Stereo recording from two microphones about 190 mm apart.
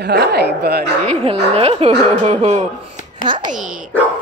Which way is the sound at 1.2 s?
30° right (ahead or behind).